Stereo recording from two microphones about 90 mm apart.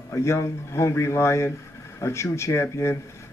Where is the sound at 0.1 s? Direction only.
35° left (ahead or behind).